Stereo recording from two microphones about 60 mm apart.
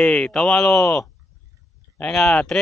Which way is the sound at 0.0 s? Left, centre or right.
Centre.